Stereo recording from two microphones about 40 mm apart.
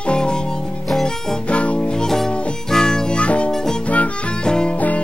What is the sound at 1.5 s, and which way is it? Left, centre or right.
Music, left.